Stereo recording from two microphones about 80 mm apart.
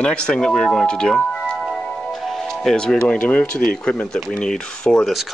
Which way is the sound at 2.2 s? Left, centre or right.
Centre.